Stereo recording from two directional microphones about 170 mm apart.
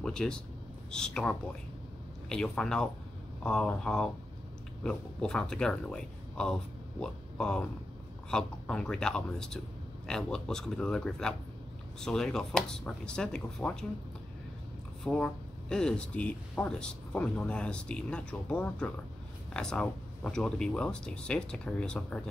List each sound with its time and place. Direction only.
0.0 s speech: 5° left (ahead or behind)
15.0 s speech: 5° left (ahead or behind)